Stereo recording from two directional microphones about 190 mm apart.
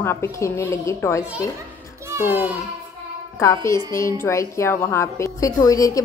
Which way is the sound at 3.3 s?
15° left (ahead or behind).